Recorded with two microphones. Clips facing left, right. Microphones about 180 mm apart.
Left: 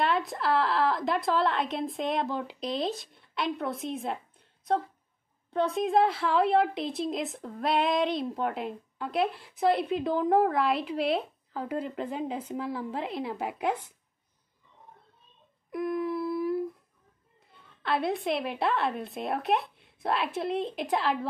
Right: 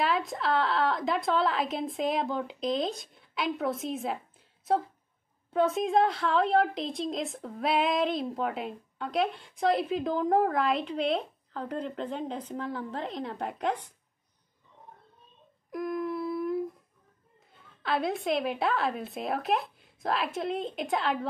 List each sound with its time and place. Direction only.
0.0 s a woman's voice: centre (ahead or behind)
5.5 s a woman's voice: centre (ahead or behind)
15.7 s a sound: centre (ahead or behind)
17.8 s a woman's voice: centre (ahead or behind)